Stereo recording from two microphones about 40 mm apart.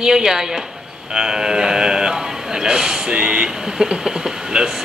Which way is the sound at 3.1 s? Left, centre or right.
Right.